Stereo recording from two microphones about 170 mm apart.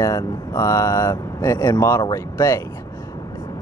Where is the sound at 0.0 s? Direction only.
20° left (ahead or behind).